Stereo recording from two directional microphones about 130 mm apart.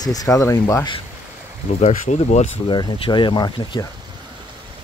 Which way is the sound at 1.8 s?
65° left (ahead or behind).